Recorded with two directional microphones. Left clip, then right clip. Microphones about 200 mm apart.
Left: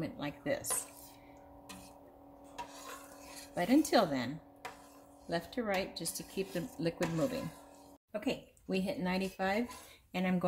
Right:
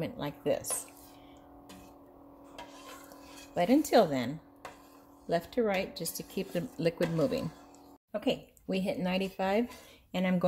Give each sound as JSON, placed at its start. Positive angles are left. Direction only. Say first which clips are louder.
{"t": 0.0, "sound": "speech", "louder": "right 5 dB", "side_deg": -40}
{"t": 3.5, "sound": "speech", "louder": "right 4 dB", "side_deg": -45}
{"t": 5.3, "sound": "speech", "louder": "right 6 dB", "side_deg": -45}
{"t": 8.1, "sound": "speech", "louder": "right 5 dB", "side_deg": -40}